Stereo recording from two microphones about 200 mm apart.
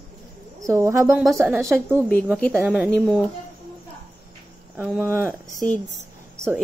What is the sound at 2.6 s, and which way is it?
Speech, 5° right (ahead or behind).